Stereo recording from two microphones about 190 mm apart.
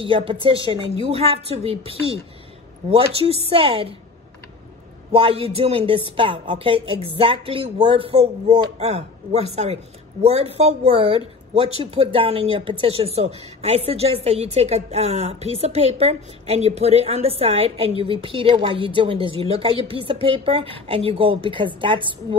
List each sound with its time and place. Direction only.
0.0 s a woman's voice: 30° right (ahead or behind)
5.1 s a woman's voice: 30° right (ahead or behind)